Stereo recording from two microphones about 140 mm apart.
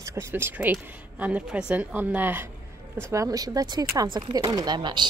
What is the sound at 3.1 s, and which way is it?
Speech, 25° right (ahead or behind).